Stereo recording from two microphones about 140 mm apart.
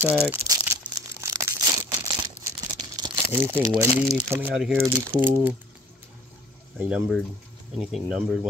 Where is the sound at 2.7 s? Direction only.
30° right (ahead or behind).